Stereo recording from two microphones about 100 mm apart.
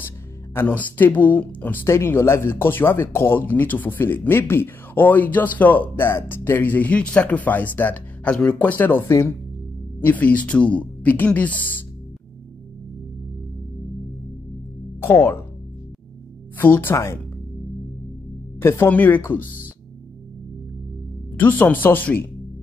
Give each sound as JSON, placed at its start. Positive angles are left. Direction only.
{"t": 0.7, "sound": "speech", "side_deg": 15}
{"t": 15.0, "sound": "speech", "side_deg": 20}
{"t": 16.5, "sound": "speech", "side_deg": 20}
{"t": 16.9, "sound": "speech", "side_deg": 30}
{"t": 18.6, "sound": "speech", "side_deg": 25}
{"t": 21.4, "sound": "speech", "side_deg": 15}